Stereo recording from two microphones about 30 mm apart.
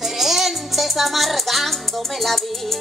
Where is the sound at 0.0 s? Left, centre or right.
Centre.